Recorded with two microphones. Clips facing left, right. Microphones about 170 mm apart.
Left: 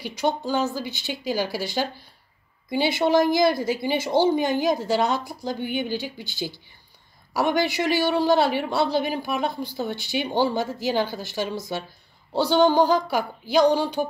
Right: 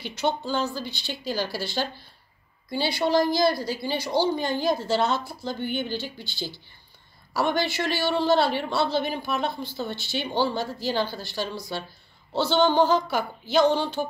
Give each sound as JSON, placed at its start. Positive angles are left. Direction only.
{"t": 0.0, "sound": "a woman's voice", "side_deg": 10}